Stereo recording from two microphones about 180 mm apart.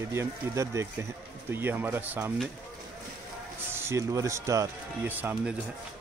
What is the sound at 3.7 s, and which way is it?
Speech, 15° right (ahead or behind).